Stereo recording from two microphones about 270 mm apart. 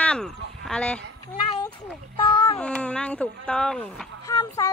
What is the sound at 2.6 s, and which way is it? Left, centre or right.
Speech, centre.